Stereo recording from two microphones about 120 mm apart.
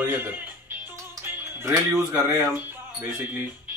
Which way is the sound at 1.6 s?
20° right (ahead or behind).